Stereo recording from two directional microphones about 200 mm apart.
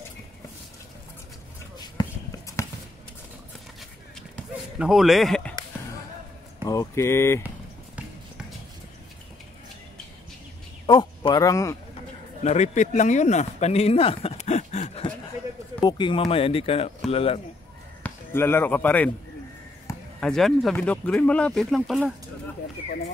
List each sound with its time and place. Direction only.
1.8 s basketball bounce: 20° left (ahead or behind)
4.7 s speech: centre (ahead or behind)
6.6 s speech: 20° left (ahead or behind)
10.9 s speech: 20° left (ahead or behind)
12.4 s speech: 35° left (ahead or behind)
15.8 s speech: 20° left (ahead or behind)
18.0 s speech: 10° left (ahead or behind)
20.2 s speech: 5° left (ahead or behind)